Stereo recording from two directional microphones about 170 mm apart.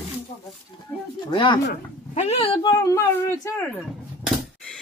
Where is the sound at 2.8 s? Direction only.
20° left (ahead or behind).